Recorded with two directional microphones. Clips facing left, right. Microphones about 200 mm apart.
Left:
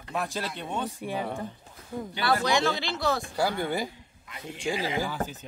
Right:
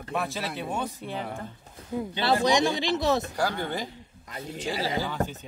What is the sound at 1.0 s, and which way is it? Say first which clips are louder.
Speech: left 2 dB; 10° left (ahead or behind).